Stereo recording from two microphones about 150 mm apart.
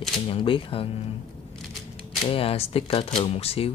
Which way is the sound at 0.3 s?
35° left (ahead or behind).